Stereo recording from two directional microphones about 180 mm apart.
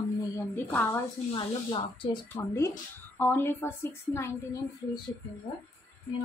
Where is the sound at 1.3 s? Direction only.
30° left (ahead or behind).